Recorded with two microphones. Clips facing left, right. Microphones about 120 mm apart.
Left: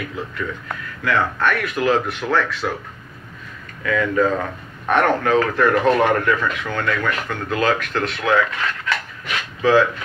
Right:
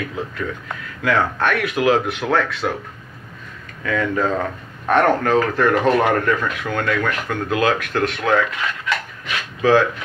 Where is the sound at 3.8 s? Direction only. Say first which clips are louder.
Left 2 dB; 30° right (ahead or behind).